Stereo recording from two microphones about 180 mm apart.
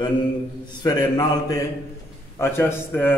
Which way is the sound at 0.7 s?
25° left (ahead or behind).